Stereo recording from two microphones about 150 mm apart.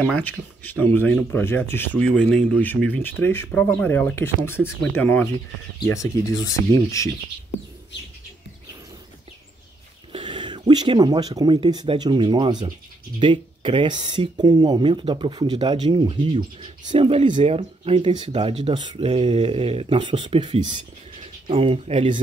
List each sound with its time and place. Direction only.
0.0 s speech: 10° left (ahead or behind)
2.0 s speech: 5° left (ahead or behind); by 7.1 s 20° left (ahead or behind)
10.1 s speech: 35° right (ahead or behind)